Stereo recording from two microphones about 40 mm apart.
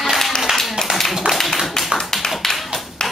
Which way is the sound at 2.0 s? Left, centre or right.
Centre.